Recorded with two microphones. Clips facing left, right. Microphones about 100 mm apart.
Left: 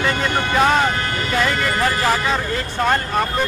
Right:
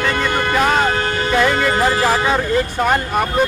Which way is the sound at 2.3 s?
10° right (ahead or behind).